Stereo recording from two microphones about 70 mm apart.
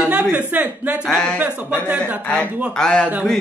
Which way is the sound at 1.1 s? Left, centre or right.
Centre.